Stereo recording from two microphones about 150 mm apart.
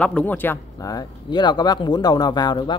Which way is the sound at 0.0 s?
10° left (ahead or behind).